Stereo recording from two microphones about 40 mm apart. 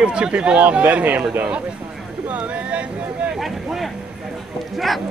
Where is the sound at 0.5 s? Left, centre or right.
Right.